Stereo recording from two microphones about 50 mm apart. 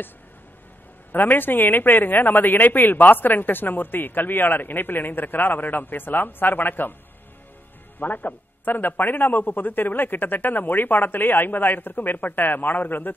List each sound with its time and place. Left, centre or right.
1.1 s a woman's voice: left
8.0 s a woman's voice: left